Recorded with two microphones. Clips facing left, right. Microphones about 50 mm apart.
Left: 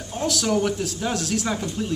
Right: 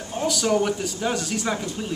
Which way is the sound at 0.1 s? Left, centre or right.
Centre.